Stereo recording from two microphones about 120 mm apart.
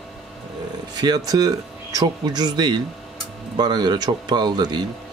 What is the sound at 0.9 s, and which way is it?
A man's voice, 35° right (ahead or behind).